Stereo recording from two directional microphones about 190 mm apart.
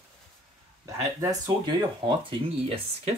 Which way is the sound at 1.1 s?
20° right (ahead or behind).